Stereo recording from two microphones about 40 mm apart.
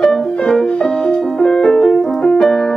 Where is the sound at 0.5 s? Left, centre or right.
Centre.